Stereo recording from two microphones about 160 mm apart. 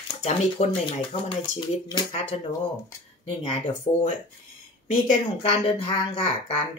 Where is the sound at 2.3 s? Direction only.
40° left (ahead or behind).